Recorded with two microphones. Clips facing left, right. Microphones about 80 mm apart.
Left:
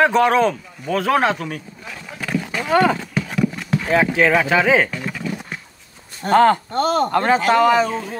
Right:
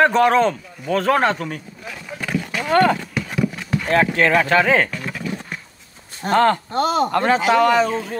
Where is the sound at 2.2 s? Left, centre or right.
Centre.